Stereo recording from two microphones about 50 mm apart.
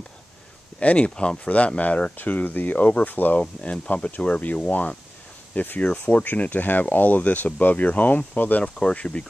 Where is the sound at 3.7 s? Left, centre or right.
Left.